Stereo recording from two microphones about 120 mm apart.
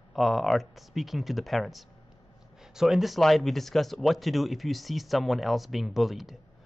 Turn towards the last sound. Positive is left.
turn(degrees=0)  # may be behind; listen again after turning